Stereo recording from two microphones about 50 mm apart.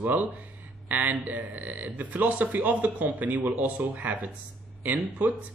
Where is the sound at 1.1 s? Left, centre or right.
Right.